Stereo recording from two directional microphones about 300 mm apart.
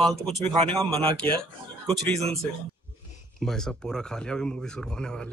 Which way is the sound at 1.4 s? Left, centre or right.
Centre.